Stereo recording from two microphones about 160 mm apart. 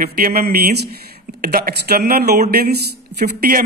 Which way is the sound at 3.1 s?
75° right (ahead or behind).